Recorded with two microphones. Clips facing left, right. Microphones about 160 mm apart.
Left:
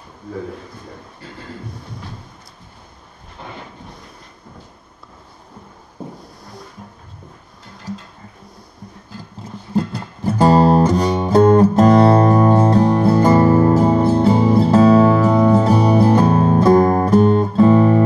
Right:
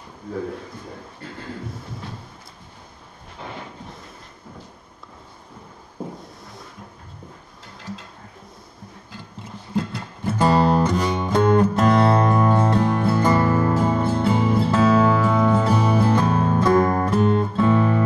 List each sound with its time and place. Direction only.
9.8 s music: 40° left (ahead or behind)